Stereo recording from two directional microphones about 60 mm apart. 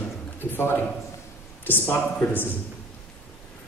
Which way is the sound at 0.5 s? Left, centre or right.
Left.